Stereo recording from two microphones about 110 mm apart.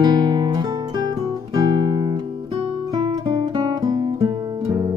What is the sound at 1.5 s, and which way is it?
Guitar, 40° right (ahead or behind).